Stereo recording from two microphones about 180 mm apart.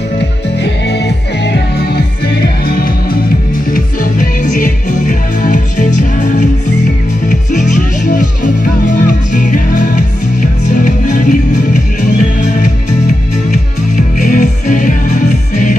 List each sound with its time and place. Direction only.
0.6 s music: 70° left (ahead or behind); by 15.8 s 45° left (ahead or behind)